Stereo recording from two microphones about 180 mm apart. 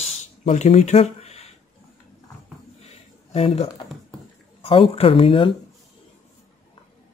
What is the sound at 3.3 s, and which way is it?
Speech, 35° left (ahead or behind).